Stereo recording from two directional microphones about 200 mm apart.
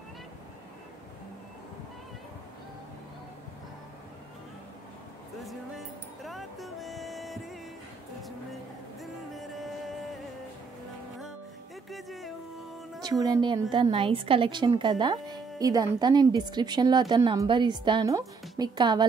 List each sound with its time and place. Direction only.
5.4 s music: centre (ahead or behind)
9.0 s music: centre (ahead or behind)
11.9 s speech: centre (ahead or behind)
13.0 s a woman's voice: 20° right (ahead or behind)